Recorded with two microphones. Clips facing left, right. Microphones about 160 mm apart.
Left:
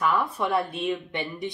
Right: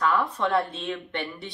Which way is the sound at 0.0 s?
15° left (ahead or behind).